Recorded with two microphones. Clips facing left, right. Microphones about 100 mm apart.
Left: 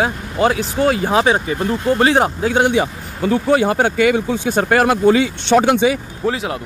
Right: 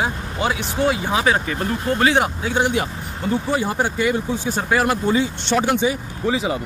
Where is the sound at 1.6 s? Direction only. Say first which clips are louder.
Left 4 dB; 30° left (ahead or behind).